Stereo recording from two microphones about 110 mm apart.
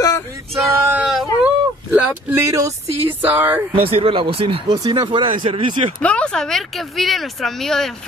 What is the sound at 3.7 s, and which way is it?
Speech, 55° right (ahead or behind).